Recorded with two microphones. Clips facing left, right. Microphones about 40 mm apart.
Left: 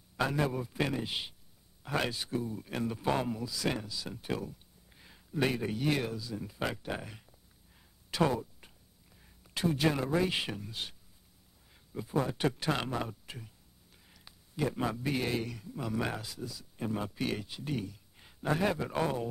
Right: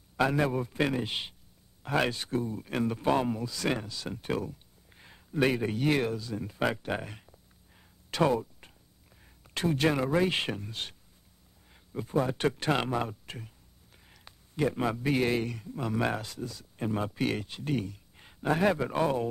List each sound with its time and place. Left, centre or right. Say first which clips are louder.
0.2 s speech: right 4 dB; right
3.7 s speech: right 4 dB; right
9.8 s speech: right 4 dB; right
10.7 s speech: right 2 dB; right
11.9 s speech: right 4 dB; centre
12.5 s speech: right 4 dB; right
14.1 s a sound: right 4 dB; centre
15.0 s a man's voice: right 5 dB; right